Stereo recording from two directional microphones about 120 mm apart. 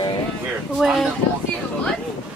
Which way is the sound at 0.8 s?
Centre (ahead or behind).